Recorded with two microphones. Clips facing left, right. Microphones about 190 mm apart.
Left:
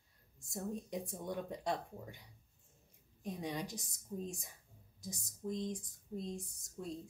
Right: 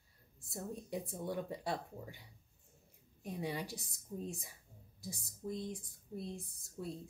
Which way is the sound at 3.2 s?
5° right (ahead or behind).